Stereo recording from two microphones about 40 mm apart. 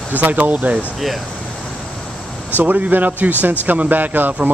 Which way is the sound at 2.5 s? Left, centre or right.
Right.